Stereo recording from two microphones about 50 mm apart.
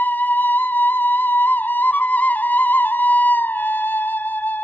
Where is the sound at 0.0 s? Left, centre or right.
Left.